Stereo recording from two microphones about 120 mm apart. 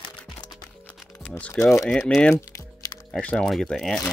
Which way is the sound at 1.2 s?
10° left (ahead or behind).